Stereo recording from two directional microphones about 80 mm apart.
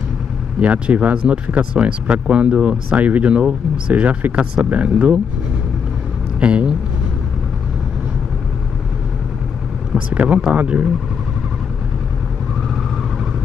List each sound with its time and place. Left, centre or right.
0.6 s speech: centre
6.4 s speech: centre
9.9 s speech: centre